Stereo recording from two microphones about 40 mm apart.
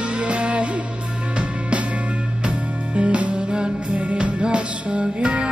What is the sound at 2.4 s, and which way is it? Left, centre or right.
Music, right.